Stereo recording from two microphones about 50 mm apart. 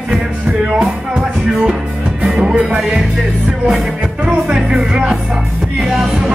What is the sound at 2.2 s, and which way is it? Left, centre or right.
Music, centre.